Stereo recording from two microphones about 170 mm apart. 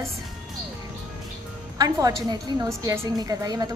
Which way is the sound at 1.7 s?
20° right (ahead or behind).